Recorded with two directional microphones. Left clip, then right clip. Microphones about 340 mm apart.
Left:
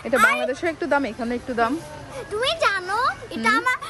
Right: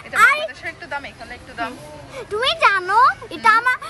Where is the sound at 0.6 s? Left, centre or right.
Centre.